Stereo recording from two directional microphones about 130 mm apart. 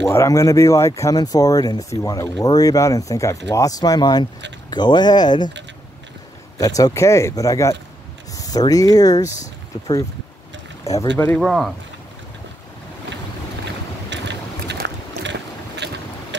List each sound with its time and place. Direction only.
0.0 s speech: 25° left (ahead or behind)
6.6 s speech: 25° left (ahead or behind)
10.8 s speech: 25° left (ahead or behind)
11.3 s speech: centre (ahead or behind)